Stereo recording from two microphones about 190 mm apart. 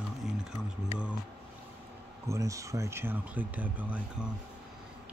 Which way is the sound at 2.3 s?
15° right (ahead or behind).